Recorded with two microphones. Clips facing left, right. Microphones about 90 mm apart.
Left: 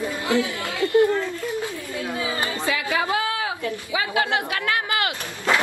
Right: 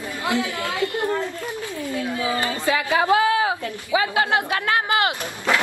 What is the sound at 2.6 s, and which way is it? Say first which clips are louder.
A woman's voice: right 4 dB; 35° right (ahead or behind).